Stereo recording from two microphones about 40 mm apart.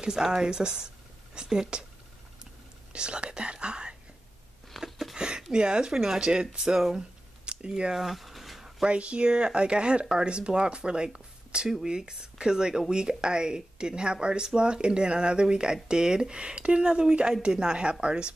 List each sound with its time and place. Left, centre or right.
0.0 s speech: centre
2.9 s speech: right
4.7 s a sound: centre
5.1 s speech: centre
7.9 s a sound: centre
8.8 s speech: right